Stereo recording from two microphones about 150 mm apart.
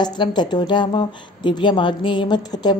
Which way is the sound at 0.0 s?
30° left (ahead or behind).